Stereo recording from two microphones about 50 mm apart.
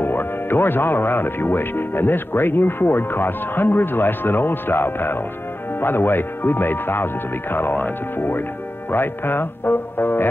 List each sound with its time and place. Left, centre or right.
0.0 s speech: left